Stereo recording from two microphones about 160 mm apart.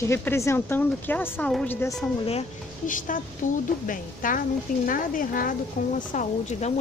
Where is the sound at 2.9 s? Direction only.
55° left (ahead or behind).